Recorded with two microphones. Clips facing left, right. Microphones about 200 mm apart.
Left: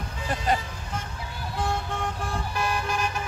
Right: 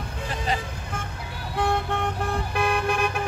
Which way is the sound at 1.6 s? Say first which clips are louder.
Right 5 dB; 60° right (ahead or behind).